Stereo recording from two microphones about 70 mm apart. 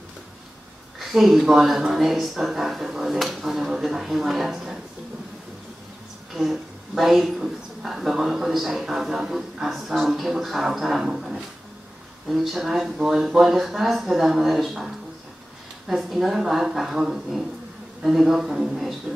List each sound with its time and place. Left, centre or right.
0.9 s a woman's voice: centre
6.3 s a woman's voice: centre
15.9 s a woman's voice: centre